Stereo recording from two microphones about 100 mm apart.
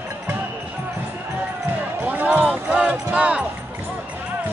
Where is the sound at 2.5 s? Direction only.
10° right (ahead or behind).